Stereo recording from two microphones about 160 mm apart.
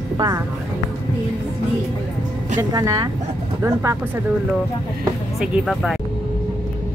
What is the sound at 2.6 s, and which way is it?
Speech, 25° right (ahead or behind).